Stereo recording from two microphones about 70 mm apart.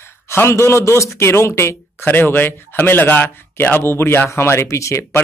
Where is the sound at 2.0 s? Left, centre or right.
Left.